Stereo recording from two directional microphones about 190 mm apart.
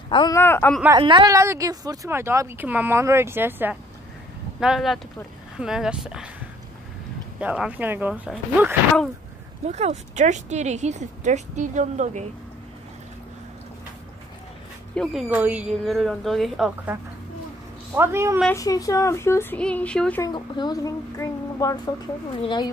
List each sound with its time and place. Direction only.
0.1 s speech: 25° left (ahead or behind)
0.4 s speech: 10° left (ahead or behind)
0.9 s a woman's voice: 25° right (ahead or behind); by 6.3 s 5° right (ahead or behind)
7.3 s speech: 5° right (ahead or behind)
9.7 s speech: 35° right (ahead or behind)
15.0 s a woman's voice: 5° right (ahead or behind)
18.5 s speech: 20° left (ahead or behind)
20.2 s a woman's voice: 25° left (ahead or behind)